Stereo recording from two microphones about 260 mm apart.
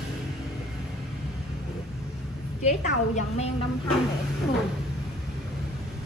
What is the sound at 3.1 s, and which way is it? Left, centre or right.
Speech, left.